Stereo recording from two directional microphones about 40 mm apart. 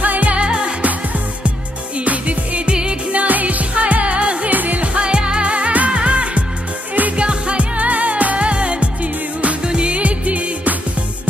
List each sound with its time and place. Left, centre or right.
0.0 s music of asia: right
0.4 s music: right
2.0 s music: right
2.7 s music: right
3.2 s music: right
4.5 s music: right
4.9 s music: right
5.5 s music: right
5.9 s music: right